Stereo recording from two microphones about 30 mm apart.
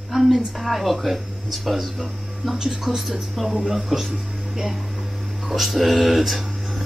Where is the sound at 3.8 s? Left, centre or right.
Centre.